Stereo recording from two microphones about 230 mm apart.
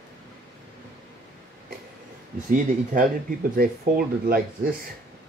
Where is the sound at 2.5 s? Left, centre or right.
Right.